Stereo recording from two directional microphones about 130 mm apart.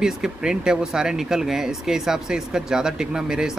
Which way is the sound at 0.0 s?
5° right (ahead or behind).